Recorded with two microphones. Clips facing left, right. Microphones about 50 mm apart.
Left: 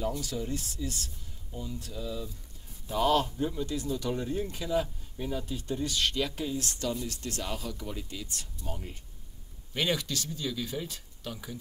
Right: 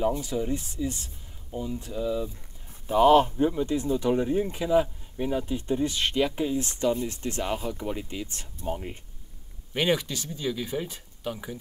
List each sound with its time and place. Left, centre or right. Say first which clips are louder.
0.0 s speech: right 6 dB; right